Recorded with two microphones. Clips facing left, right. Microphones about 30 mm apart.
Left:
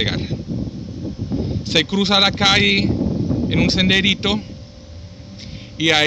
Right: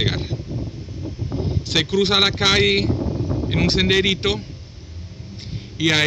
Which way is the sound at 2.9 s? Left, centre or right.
Right.